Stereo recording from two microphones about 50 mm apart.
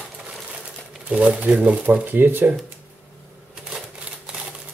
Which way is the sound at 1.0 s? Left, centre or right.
Right.